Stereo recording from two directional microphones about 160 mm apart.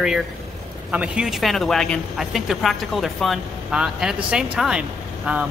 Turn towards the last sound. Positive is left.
turn(degrees=-5)  # may be behind; listen again after turning